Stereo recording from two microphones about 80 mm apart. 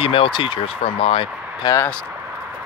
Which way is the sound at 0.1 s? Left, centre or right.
Left.